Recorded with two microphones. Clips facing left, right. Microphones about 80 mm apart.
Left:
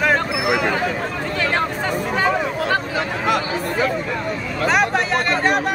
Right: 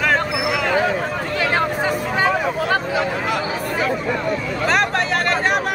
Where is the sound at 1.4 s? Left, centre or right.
Centre.